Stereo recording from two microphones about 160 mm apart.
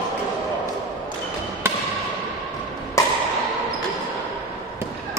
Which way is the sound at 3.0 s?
20° left (ahead or behind).